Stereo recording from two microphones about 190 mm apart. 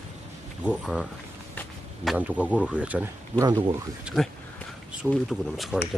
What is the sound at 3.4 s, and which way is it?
Speech, 25° right (ahead or behind).